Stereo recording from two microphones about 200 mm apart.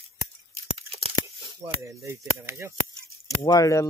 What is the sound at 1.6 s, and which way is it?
Speech, 15° right (ahead or behind).